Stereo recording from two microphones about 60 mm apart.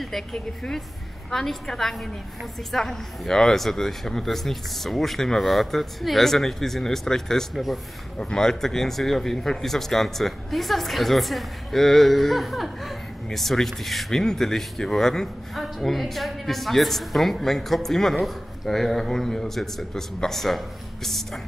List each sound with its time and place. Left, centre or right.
0.0 s speech: centre